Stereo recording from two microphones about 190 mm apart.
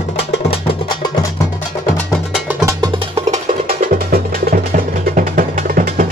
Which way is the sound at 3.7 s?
50° right (ahead or behind).